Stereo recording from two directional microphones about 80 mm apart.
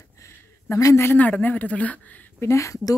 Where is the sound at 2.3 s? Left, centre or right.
Left.